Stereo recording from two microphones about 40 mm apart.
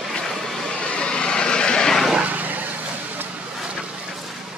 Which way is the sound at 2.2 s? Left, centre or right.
Right.